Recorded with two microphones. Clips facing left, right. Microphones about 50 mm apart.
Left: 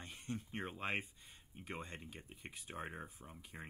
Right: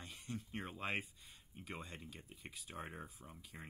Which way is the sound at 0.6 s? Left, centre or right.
Centre.